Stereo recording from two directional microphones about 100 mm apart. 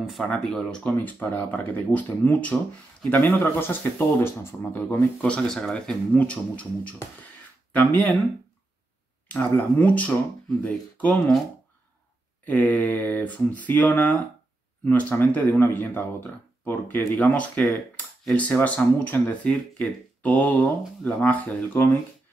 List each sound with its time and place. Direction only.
0.2 s speech: 10° left (ahead or behind)
9.3 s speech: 15° left (ahead or behind)
12.4 s speech: 15° left (ahead or behind)